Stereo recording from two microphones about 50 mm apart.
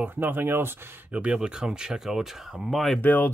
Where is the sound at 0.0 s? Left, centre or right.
Right.